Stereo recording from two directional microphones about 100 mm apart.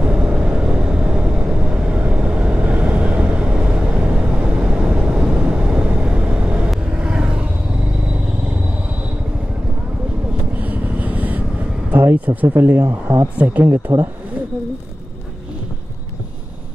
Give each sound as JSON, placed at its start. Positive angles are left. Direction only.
{"t": 0.0, "sound": "vehicle", "side_deg": -10}
{"t": 10.6, "sound": "vehicle", "side_deg": -15}
{"t": 11.9, "sound": "speech", "side_deg": -20}
{"t": 13.4, "sound": "speech", "side_deg": -15}